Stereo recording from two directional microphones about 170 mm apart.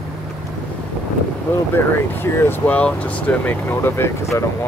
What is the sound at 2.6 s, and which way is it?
Speech, 10° left (ahead or behind).